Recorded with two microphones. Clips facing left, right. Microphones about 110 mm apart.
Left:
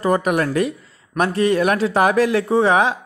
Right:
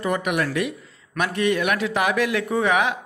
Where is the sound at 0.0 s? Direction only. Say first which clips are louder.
Left 5 dB; 35° left (ahead or behind).